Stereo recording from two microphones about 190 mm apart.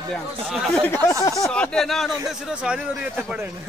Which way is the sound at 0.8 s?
10° left (ahead or behind).